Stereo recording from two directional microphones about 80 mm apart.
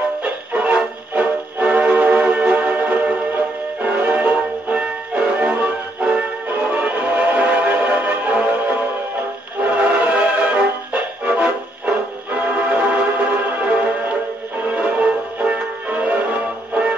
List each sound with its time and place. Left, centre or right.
0.2 s music: centre